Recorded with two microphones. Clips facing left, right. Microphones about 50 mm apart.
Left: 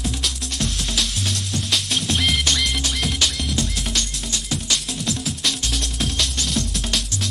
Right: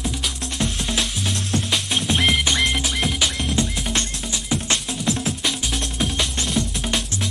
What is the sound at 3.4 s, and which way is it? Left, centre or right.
Music, right.